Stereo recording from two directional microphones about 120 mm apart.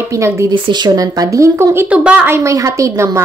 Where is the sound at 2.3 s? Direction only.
25° right (ahead or behind).